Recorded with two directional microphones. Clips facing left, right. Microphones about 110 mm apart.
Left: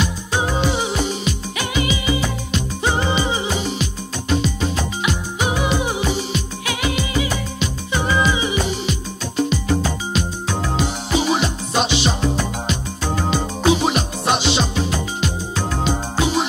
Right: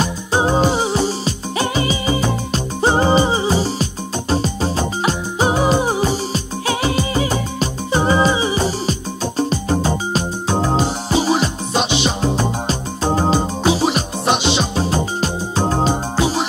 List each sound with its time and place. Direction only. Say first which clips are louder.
0.0 s music: right 4 dB; 35° right (ahead or behind)